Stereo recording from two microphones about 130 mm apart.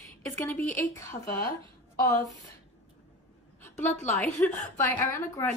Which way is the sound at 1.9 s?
20° left (ahead or behind).